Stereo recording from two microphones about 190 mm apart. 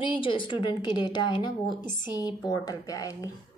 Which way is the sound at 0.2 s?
25° left (ahead or behind).